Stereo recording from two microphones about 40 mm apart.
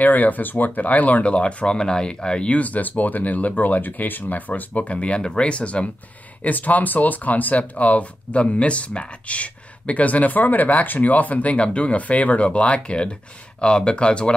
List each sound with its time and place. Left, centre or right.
0.0 s speech: left
0.7 s speech: left
2.6 s speech: left
6.4 s speech: left